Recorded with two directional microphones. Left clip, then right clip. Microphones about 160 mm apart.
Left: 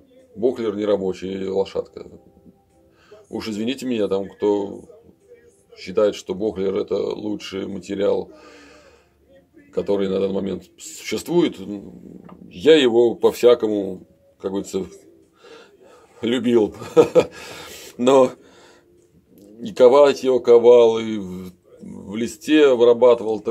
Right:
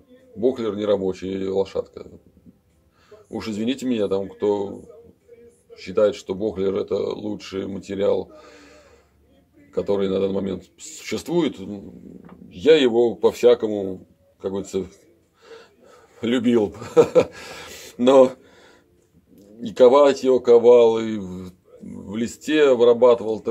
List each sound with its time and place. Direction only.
0.4 s a man's voice: 10° left (ahead or behind)
3.3 s a man's voice: 10° left (ahead or behind)
15.4 s a sound: 15° left (ahead or behind)
16.2 s a man's voice: 15° left (ahead or behind)